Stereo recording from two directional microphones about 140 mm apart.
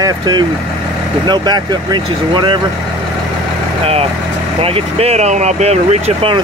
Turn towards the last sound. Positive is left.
turn(degrees=-45)  # may be behind; listen again after turning